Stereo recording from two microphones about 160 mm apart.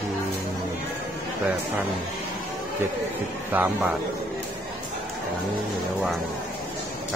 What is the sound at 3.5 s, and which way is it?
Speech, 15° right (ahead or behind).